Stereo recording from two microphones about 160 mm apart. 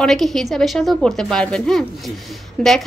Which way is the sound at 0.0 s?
Centre (ahead or behind).